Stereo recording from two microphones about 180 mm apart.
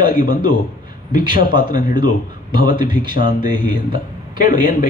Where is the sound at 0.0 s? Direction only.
50° left (ahead or behind).